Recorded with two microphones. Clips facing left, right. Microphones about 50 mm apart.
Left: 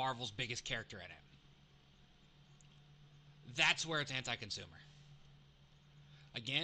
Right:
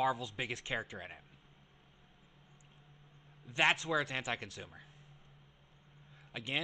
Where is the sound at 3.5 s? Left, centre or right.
Right.